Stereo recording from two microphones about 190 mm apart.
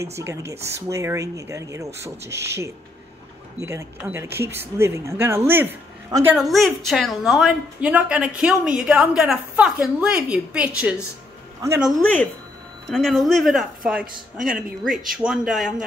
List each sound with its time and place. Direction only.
0.0 s speech: 15° right (ahead or behind)
6.3 s a woman's voice: centre (ahead or behind)
11.8 s a woman's voice: 5° left (ahead or behind)